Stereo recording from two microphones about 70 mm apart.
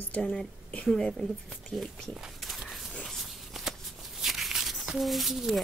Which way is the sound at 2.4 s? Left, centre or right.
Centre.